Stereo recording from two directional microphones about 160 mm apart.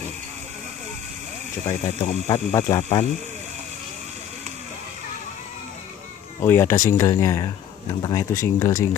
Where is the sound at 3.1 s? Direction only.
45° right (ahead or behind).